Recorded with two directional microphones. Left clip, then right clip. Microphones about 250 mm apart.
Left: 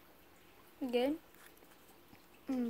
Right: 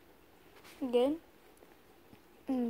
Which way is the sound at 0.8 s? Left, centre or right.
Centre.